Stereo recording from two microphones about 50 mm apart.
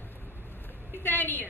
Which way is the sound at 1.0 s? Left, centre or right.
Left.